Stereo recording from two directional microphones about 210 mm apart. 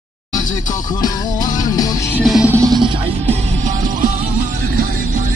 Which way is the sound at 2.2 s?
5° right (ahead or behind).